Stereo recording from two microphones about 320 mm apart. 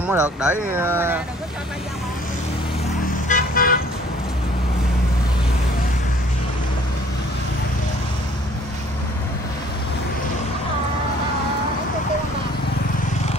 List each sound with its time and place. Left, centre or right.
0.0 s speech: centre
3.3 s car: left